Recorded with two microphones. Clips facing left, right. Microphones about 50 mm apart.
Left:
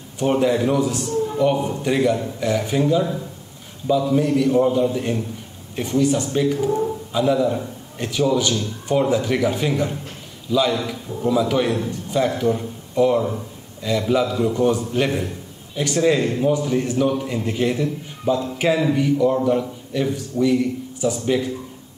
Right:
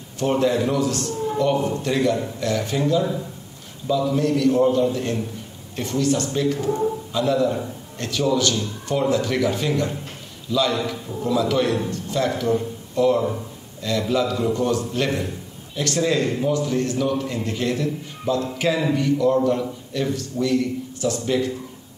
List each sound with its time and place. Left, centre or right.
0.2 s a man's voice: centre